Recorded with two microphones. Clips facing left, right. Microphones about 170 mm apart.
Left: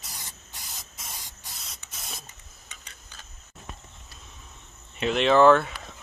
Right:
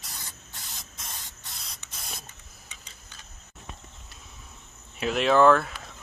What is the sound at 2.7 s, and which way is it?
Tick-tock, 65° left (ahead or behind).